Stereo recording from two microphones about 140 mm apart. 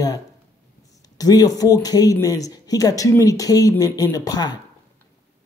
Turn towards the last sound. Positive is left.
turn(degrees=30)  # may be behind; listen again after turning